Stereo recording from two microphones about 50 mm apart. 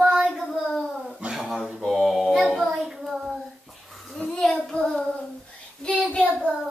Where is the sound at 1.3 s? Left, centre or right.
Centre.